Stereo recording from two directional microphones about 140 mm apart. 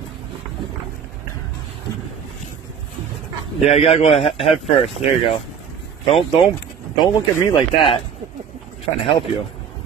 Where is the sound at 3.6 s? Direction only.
50° left (ahead or behind).